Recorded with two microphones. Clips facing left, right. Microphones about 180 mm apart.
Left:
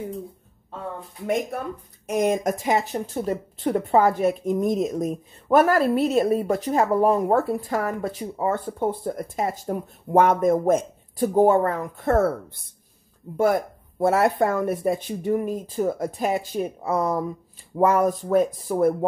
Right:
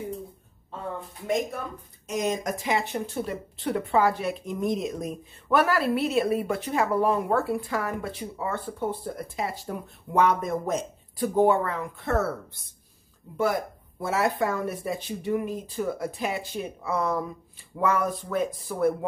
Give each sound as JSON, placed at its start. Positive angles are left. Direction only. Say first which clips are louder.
{"t": 1.2, "sound": "speech", "louder": "left 3 dB", "side_deg": 60}